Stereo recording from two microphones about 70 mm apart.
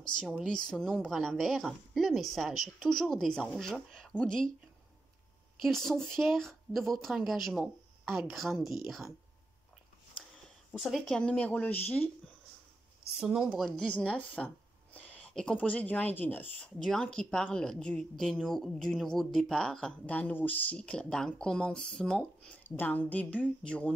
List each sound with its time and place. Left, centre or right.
0.5 s a woman's voice: centre
1.1 s a woman's voice: centre
5.6 s a woman's voice: centre
11.1 s speech: centre
13.2 s speech: centre
13.5 s a woman's voice: centre
13.8 s speech: left
16.8 s a woman's voice: centre
20.1 s a woman's voice: left
22.6 s speech: left